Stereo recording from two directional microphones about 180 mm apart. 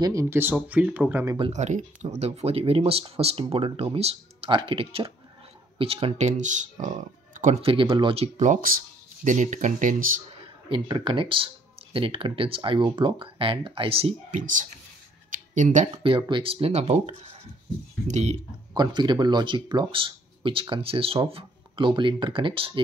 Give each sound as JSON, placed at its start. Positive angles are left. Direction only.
{"t": 0.0, "sound": "speech", "side_deg": -20}
{"t": 1.4, "sound": "speech", "side_deg": -40}
{"t": 10.7, "sound": "speech", "side_deg": -30}
{"t": 15.3, "sound": "a sound", "side_deg": -45}
{"t": 16.0, "sound": "speech", "side_deg": -30}
{"t": 18.7, "sound": "speech", "side_deg": -25}